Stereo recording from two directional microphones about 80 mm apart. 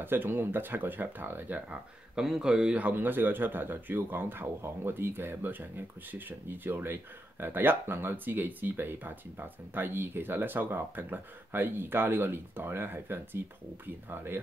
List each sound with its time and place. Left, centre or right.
0.0 s speech: right
1.7 s speech: centre
2.8 s speech: right